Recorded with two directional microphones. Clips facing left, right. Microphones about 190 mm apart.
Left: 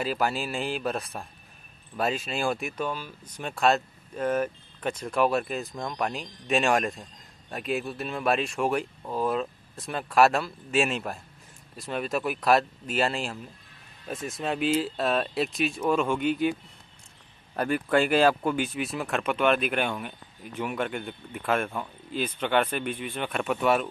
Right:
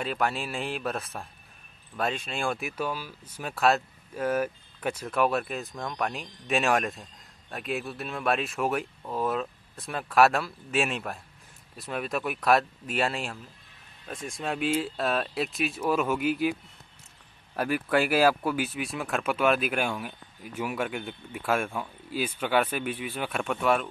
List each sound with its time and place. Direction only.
0.0 s speech: centre (ahead or behind)
17.6 s speech: 5° right (ahead or behind)